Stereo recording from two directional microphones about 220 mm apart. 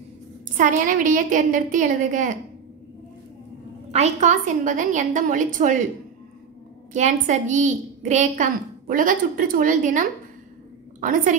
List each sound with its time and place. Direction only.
0.6 s a woman's voice: 35° right (ahead or behind)
3.9 s a woman's voice: 30° right (ahead or behind)
6.9 s a woman's voice: 35° right (ahead or behind)